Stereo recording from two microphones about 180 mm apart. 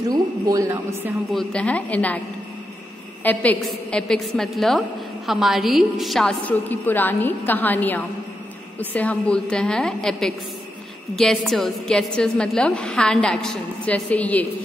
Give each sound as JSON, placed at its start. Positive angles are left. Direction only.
{"t": 0.1, "sound": "a man's voice", "side_deg": -20}
{"t": 1.3, "sound": "a woman's voice", "side_deg": 5}
{"t": 3.3, "sound": "a woman's voice", "side_deg": 5}